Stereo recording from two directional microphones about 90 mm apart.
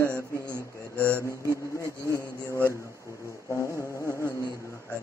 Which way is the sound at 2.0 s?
35° left (ahead or behind).